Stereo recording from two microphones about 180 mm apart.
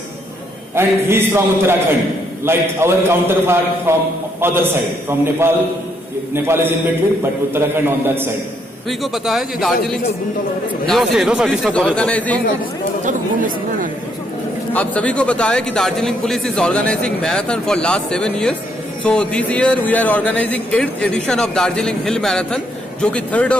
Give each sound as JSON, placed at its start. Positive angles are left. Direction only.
{"t": 0.7, "sound": "a man's voice", "side_deg": -15}
{"t": 8.8, "sound": "a man's voice", "side_deg": 0}
{"t": 10.9, "sound": "a man's voice", "side_deg": 0}
{"t": 13.0, "sound": "speech", "side_deg": -45}
{"t": 14.7, "sound": "a man's voice", "side_deg": 5}